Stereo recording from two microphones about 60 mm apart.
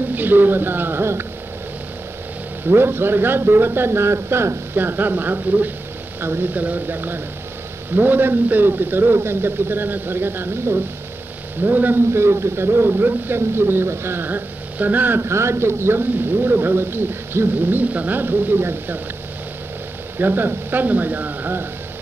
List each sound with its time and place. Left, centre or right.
0.1 s speech: right
2.7 s speech: right
6.5 s speech: right
12.1 s speech: right
15.2 s speech: right
20.2 s speech: right